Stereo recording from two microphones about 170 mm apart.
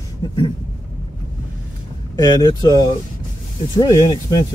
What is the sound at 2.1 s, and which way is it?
Speech, 25° left (ahead or behind).